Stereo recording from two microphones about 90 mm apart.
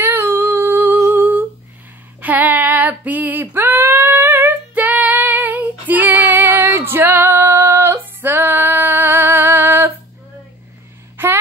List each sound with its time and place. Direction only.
0.0 s humming: 25° right (ahead or behind)
2.2 s female singing: 20° right (ahead or behind)
11.2 s a sound: 25° right (ahead or behind)